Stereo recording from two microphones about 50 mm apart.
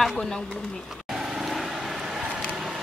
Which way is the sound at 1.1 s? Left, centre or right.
Centre.